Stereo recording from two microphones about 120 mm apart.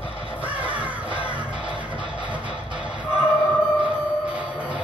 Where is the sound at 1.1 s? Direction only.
10° right (ahead or behind).